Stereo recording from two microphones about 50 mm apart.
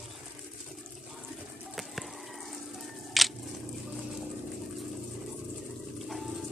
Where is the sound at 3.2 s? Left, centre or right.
Centre.